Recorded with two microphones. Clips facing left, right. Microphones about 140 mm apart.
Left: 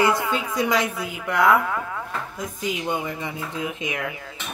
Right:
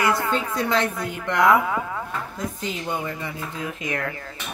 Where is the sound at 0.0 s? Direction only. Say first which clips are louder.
Left 1 dB; 20° left (ahead or behind); by 2.0 s 5° right (ahead or behind).